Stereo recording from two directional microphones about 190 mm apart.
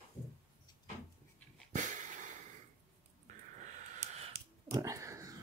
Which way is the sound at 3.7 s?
35° right (ahead or behind).